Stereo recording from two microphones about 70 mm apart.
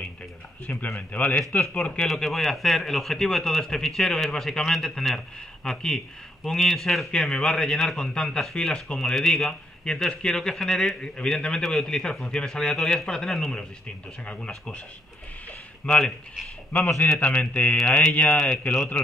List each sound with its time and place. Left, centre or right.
0.7 s speech: left
2.0 s a man's voice: centre
14.2 s a man's voice: centre
15.8 s a man's voice: centre
17.2 s speech: left